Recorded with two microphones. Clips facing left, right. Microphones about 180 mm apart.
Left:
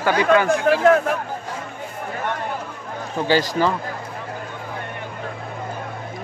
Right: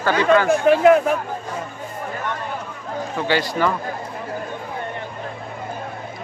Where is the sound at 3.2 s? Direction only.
40° left (ahead or behind).